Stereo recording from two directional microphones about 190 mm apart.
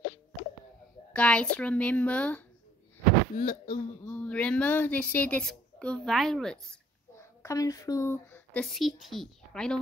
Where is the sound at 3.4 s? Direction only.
45° left (ahead or behind).